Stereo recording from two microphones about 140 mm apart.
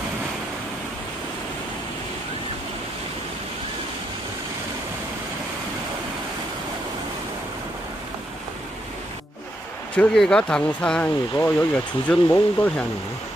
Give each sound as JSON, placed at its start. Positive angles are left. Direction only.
{"t": 9.9, "sound": "speech", "side_deg": 5}